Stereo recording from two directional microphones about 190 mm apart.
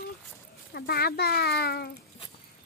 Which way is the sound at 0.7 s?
55° left (ahead or behind).